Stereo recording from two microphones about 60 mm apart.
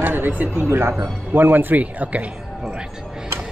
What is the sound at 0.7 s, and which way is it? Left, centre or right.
A man's voice, right.